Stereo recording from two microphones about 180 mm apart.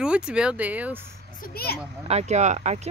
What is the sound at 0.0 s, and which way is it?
Speech, 5° right (ahead or behind).